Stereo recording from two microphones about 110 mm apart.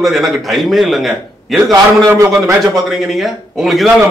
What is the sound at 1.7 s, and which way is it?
A man's voice, 30° right (ahead or behind).